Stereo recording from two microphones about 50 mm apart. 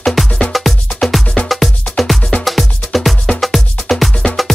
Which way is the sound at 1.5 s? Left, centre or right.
Centre.